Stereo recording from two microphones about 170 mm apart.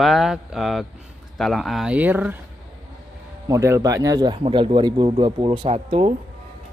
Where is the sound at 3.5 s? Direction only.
20° right (ahead or behind); by 6.1 s 35° right (ahead or behind).